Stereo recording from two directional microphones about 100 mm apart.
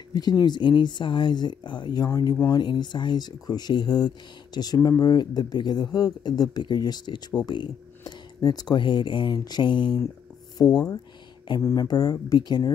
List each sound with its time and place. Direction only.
0.1 s speech: 40° left (ahead or behind)
2.5 s speech: 50° left (ahead or behind)
4.7 s speech: 35° left (ahead or behind); by 9.9 s 55° left (ahead or behind)
10.6 s speech: 35° left (ahead or behind)